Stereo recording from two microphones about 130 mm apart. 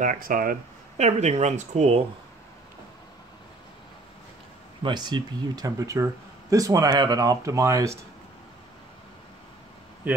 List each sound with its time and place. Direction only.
0.0 s speech: 90° right; by 2.0 s 60° right (ahead or behind)
4.8 s speech: 35° right (ahead or behind)
10.0 s speech: 15° right (ahead or behind)